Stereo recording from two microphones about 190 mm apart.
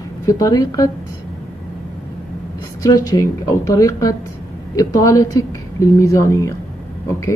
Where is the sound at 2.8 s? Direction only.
15° left (ahead or behind).